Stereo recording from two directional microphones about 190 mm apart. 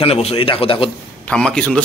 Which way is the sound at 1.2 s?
5° left (ahead or behind).